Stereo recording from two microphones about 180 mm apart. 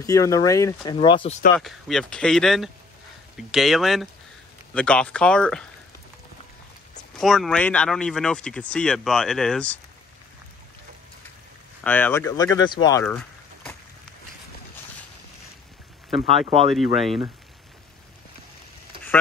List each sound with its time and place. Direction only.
0.0 s speech: 20° left (ahead or behind)
0.9 s speech: 30° left (ahead or behind)
1.6 s speech: centre (ahead or behind)
7.2 s speech: centre (ahead or behind)
11.8 s speech: 10° left (ahead or behind)
13.0 s a sound: 5° left (ahead or behind)
16.3 s speech: 35° right (ahead or behind)
16.7 s speech: centre (ahead or behind)